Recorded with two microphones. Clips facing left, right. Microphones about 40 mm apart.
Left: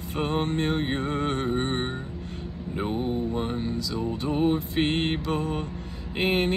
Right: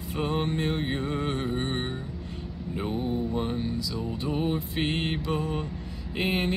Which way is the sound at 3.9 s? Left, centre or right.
Left.